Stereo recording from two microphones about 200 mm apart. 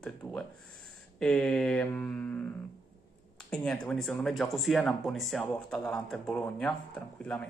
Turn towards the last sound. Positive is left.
turn(degrees=5)  # may be behind; listen again after turning